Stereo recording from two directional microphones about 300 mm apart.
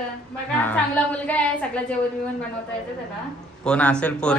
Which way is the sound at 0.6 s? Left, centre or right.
Centre.